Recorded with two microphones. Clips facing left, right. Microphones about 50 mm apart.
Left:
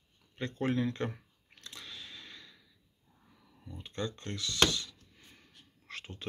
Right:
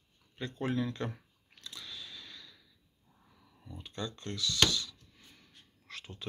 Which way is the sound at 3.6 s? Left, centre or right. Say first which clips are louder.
Left 2 dB; left.